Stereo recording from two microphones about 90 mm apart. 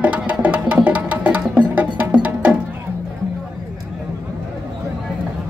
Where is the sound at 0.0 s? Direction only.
15° right (ahead or behind).